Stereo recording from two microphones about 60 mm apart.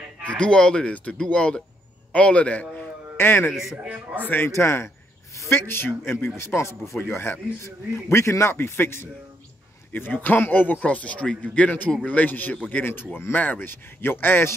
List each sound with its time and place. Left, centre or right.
0.3 s a man's voice: centre
3.2 s speech: left
3.8 s a man's voice: right
4.5 s a sound: left
5.6 s a man's voice: left
7.6 s a man's voice: left